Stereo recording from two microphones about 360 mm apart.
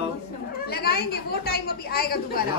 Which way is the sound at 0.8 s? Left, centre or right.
Left.